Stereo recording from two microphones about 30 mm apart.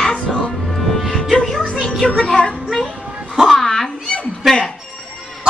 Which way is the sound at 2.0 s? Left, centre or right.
Left.